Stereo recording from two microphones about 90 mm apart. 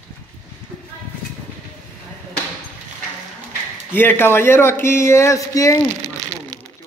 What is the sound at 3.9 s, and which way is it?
Speech, 25° left (ahead or behind).